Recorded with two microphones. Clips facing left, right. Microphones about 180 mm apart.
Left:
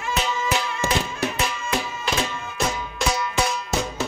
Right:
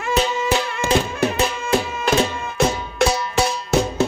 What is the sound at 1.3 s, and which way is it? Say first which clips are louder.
Music: right 6 dB; 30° right (ahead or behind).